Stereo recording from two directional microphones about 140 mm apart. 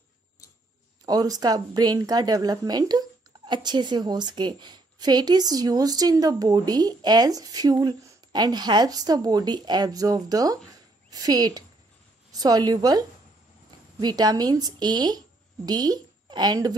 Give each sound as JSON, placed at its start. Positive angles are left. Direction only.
{"t": 1.0, "sound": "a woman's voice", "side_deg": -25}